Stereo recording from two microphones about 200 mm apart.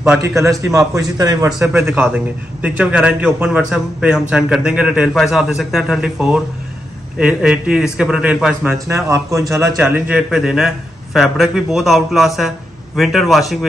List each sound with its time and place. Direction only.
0.2 s a man's voice: 15° right (ahead or behind)
8.7 s a man's voice: 15° right (ahead or behind); by 13.7 s centre (ahead or behind)